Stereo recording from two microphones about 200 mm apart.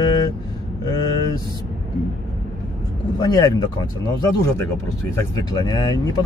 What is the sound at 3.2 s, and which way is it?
Speech, 20° left (ahead or behind).